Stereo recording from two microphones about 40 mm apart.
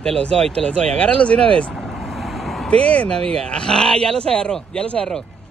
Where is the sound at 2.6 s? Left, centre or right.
Left.